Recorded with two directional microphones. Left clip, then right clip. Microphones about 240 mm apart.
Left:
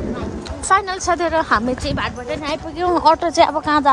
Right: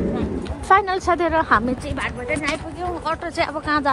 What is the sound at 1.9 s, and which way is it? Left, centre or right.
A woman's voice, centre.